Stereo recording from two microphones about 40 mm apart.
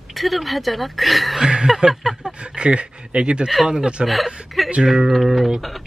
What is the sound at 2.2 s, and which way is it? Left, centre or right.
A man's voice, right.